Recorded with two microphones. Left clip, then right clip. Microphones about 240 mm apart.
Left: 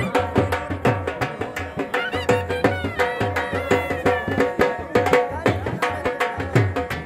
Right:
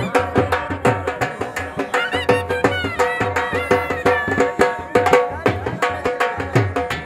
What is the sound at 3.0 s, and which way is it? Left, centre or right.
Music, right.